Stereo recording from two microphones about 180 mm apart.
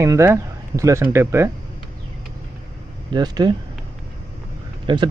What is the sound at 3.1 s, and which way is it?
Speech, 25° right (ahead or behind).